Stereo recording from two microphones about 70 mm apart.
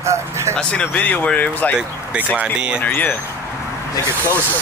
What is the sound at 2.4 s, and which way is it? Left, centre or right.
Speech, centre.